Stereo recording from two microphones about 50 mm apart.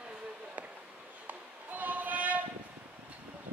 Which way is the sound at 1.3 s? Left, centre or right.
Right.